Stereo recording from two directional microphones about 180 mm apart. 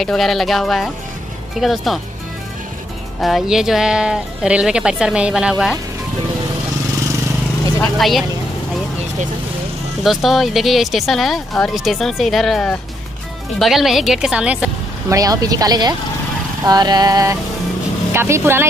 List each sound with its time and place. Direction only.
0.0 s speech: centre (ahead or behind)
3.2 s speech: centre (ahead or behind)
8.0 s speech: centre (ahead or behind)
10.0 s speech: centre (ahead or behind)
15.0 s a woman's voice: 20° right (ahead or behind)